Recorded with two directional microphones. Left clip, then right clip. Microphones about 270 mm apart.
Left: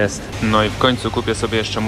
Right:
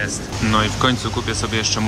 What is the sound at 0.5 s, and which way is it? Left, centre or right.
Speech, centre.